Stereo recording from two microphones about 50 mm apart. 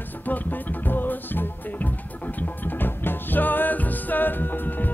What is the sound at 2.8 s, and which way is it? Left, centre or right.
Music, left.